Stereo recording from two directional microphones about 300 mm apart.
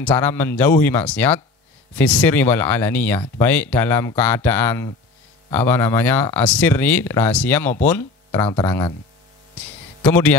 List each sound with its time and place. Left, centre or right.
0.0 s speech: centre
10.0 s speech: centre